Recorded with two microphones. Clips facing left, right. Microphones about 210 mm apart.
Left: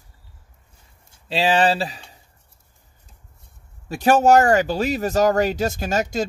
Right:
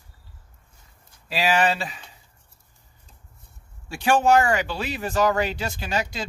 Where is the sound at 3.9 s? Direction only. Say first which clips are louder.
Left 4 dB; 40° left (ahead or behind).